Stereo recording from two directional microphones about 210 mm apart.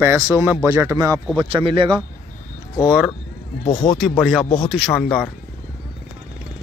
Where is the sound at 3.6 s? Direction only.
30° left (ahead or behind).